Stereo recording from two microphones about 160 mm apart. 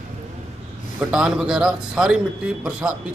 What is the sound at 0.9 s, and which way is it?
A man's voice, 5° right (ahead or behind).